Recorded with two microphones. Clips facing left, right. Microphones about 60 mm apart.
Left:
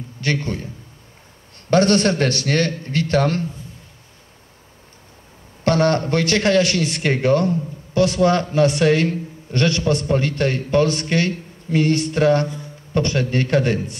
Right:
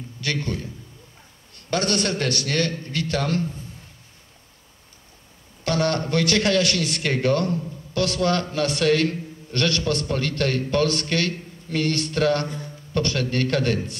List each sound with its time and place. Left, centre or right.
0.2 s a man's voice: left
1.7 s a man's voice: left
5.6 s a man's voice: left